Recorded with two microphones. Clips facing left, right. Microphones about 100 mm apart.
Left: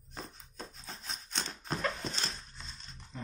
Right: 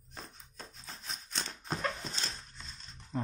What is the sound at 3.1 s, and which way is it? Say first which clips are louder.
Dog: right 8 dB; 45° right (ahead or behind).